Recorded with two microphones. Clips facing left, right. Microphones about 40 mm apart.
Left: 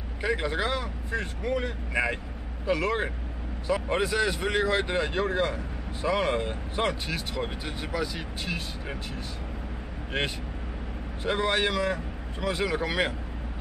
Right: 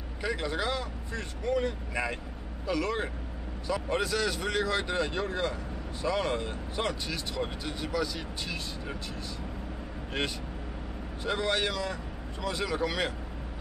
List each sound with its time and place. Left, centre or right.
0.2 s speech: left
10.1 s speech: left